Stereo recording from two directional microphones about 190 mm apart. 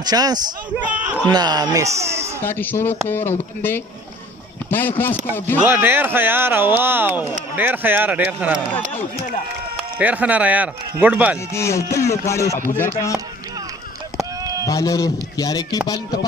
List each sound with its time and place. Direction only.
0.0 s speech: 20° right (ahead or behind)
2.4 s a sound: 10° left (ahead or behind)
5.7 s speech: 10° right (ahead or behind)
9.9 s speech: 5° right (ahead or behind)
11.5 s a sound: 15° left (ahead or behind)
14.7 s a man's voice: 20° left (ahead or behind)